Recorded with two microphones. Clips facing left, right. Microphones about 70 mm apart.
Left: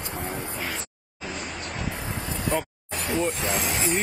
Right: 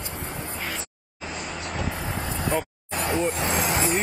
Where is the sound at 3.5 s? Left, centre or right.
Right.